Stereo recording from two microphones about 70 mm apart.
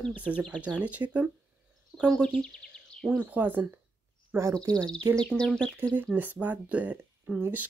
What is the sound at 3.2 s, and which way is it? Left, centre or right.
A woman's voice, right.